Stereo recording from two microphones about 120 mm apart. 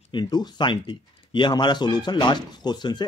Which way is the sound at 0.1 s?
35° left (ahead or behind).